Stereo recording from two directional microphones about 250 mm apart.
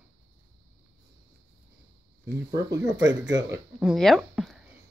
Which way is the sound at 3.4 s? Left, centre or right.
Centre.